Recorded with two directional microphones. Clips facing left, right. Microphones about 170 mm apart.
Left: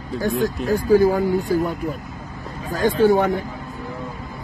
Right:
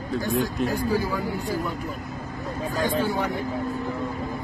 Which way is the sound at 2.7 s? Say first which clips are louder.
Left 9 dB; 45° left (ahead or behind).